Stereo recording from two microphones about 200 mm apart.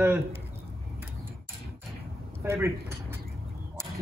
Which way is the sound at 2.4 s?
15° right (ahead or behind).